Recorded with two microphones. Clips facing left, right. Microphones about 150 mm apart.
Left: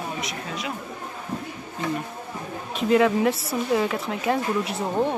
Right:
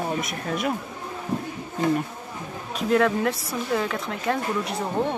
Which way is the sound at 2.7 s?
Centre (ahead or behind).